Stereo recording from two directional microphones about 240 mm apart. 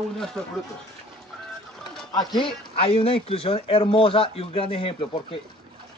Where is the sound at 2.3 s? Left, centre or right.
Left.